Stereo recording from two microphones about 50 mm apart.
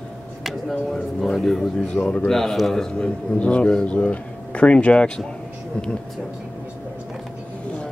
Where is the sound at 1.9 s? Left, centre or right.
Centre.